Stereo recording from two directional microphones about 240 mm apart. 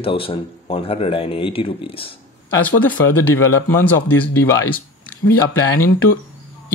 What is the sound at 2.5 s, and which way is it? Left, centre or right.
Speech, centre.